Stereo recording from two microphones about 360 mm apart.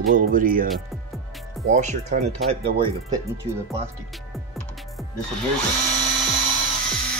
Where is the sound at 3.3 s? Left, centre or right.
Centre.